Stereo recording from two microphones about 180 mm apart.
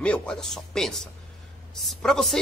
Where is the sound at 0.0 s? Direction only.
5° left (ahead or behind).